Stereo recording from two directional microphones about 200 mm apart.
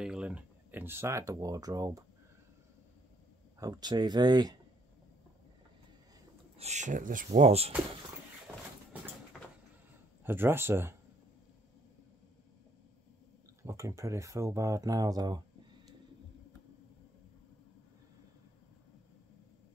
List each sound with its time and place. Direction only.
0.0 s speech: 5° right (ahead or behind)
3.5 s speech: 15° right (ahead or behind)
6.6 s speech: 35° right (ahead or behind)
8.5 s a sound: 10° right (ahead or behind)
10.2 s speech: 10° right (ahead or behind)
13.7 s speech: 15° right (ahead or behind)